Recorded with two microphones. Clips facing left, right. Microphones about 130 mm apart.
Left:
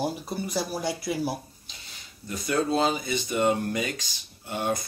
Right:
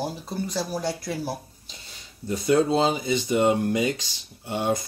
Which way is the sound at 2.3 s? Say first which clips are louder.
Right 5 dB; 25° right (ahead or behind).